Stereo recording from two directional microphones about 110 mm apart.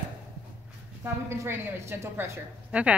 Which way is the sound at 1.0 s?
20° right (ahead or behind).